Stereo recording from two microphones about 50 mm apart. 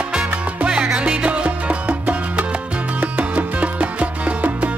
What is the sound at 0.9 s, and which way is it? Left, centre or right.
Music, right.